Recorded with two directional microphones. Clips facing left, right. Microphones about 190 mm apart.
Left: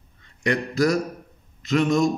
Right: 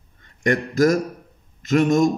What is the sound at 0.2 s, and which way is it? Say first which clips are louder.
A man's voice: right 3 dB; 50° right (ahead or behind).